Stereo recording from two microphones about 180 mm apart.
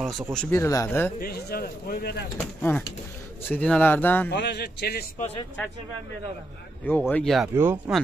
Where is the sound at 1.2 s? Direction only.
55° left (ahead or behind).